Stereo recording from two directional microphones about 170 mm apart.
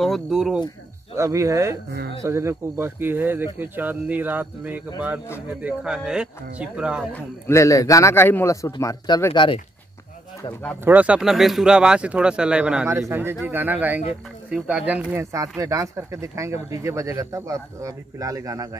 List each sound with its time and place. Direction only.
0.0 s speech: centre (ahead or behind)
1.1 s speech: 15° right (ahead or behind)
1.9 s speech: 75° right (ahead or behind)
2.2 s speech: 15° right (ahead or behind)
7.1 s a man's voice: 10° left (ahead or behind); by 9.6 s 30° left (ahead or behind)
10.8 s speech: 10° right (ahead or behind)